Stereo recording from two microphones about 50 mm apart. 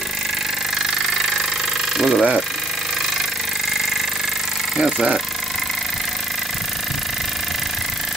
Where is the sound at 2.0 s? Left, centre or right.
Centre.